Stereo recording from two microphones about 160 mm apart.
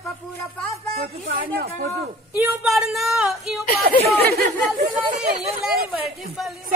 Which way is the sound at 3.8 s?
80° right.